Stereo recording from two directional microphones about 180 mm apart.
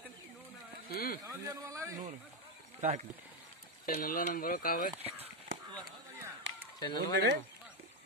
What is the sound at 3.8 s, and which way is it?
Speech, 55° left (ahead or behind).